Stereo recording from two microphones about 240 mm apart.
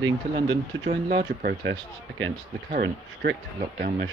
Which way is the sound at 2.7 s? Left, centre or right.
Right.